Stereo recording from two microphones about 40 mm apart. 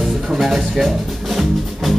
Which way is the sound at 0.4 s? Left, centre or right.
Centre.